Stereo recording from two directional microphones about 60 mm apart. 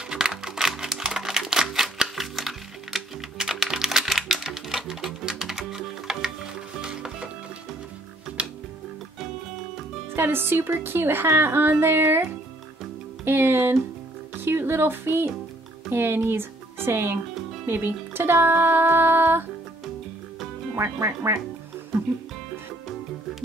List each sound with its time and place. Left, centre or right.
0.1 s typewriter: centre
8.4 s music: centre
10.1 s a woman's voice: right
20.7 s speech: right